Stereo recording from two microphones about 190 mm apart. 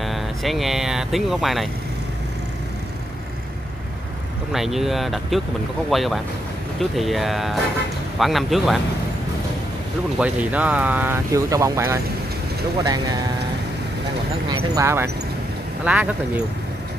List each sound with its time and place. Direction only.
0.0 s speech: centre (ahead or behind)
4.5 s speech: centre (ahead or behind)
10.1 s speech: 5° right (ahead or behind)
14.8 s speech: 15° right (ahead or behind)